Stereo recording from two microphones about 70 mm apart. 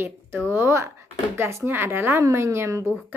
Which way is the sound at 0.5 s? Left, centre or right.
Right.